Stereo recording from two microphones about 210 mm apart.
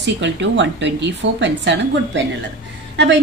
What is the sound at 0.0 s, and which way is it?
Speech, 60° right (ahead or behind).